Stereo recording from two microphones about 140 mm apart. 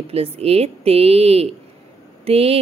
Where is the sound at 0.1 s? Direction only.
45° right (ahead or behind).